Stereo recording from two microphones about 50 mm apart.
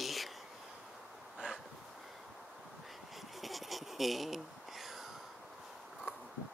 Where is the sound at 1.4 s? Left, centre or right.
Right.